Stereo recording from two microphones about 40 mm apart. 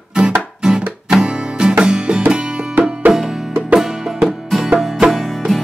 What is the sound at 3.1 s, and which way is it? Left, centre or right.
Music, centre.